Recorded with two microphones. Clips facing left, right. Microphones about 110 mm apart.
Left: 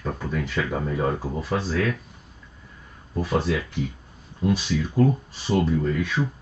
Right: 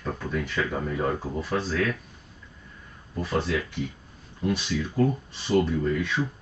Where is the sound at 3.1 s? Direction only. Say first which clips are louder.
Left 3 dB; 15° left (ahead or behind).